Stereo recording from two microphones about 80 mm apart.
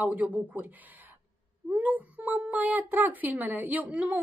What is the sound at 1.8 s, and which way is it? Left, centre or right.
Speech, centre.